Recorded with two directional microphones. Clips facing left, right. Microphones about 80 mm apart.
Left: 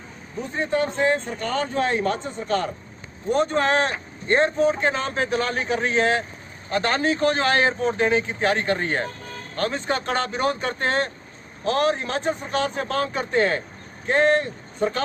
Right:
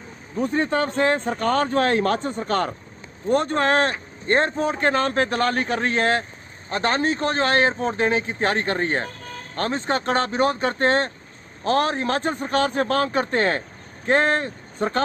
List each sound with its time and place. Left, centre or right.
0.4 s speech: right
6.7 s a man's voice: right